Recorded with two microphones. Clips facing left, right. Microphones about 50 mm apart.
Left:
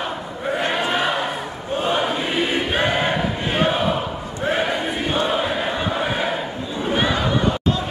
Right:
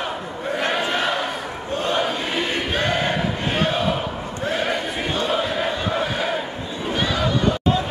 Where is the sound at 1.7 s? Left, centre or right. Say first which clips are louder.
Left 1 dB; centre.